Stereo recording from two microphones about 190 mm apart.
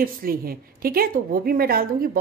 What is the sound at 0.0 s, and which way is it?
A woman's voice, 50° right (ahead or behind).